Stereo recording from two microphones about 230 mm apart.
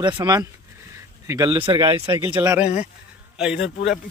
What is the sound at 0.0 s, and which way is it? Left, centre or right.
Speech, centre.